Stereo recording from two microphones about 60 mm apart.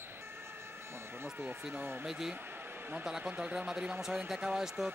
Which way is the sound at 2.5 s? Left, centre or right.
Right.